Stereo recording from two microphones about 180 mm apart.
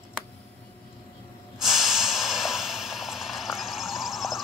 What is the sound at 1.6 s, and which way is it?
Snort, centre (ahead or behind).